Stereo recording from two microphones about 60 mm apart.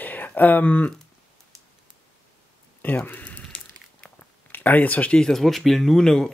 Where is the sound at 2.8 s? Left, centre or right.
Left.